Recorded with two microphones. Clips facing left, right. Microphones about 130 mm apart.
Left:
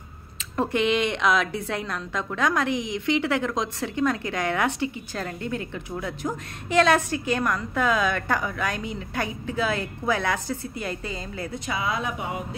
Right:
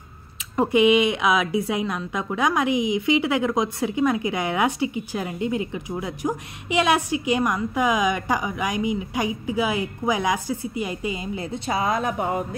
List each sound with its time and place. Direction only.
0.6 s a woman's voice: 10° right (ahead or behind)
11.5 s speech: 35° right (ahead or behind)